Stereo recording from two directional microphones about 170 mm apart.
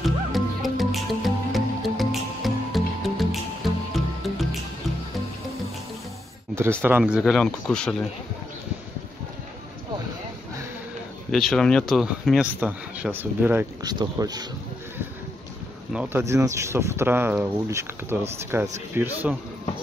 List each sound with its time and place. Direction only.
0.0 s music: centre (ahead or behind)
6.8 s speech: 10° right (ahead or behind)
11.3 s speech: 5° left (ahead or behind)
13.8 s speech: 20° right (ahead or behind)
15.9 s speech: 10° right (ahead or behind)